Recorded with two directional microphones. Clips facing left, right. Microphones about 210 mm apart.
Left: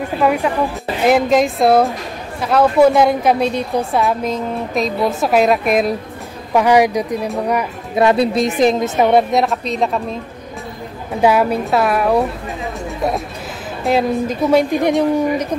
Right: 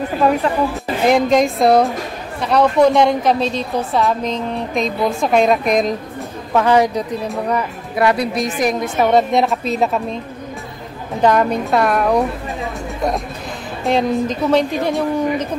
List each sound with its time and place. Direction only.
0.2 s a woman's voice: 10° left (ahead or behind)
7.9 s a woman's voice: 25° left (ahead or behind)
9.3 s a woman's voice: centre (ahead or behind)
11.1 s a woman's voice: 10° left (ahead or behind)
13.8 s a woman's voice: 5° left (ahead or behind)